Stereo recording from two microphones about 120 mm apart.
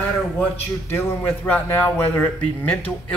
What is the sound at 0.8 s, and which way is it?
Speech, 15° left (ahead or behind).